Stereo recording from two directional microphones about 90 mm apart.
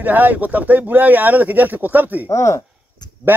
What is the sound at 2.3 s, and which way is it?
Speech, 35° left (ahead or behind).